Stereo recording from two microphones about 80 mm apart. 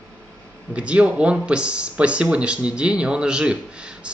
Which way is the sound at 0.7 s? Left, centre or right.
Centre.